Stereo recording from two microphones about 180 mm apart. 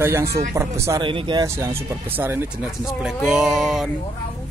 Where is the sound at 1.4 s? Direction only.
15° right (ahead or behind).